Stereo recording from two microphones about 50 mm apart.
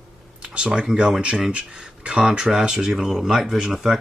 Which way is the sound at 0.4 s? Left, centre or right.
Centre.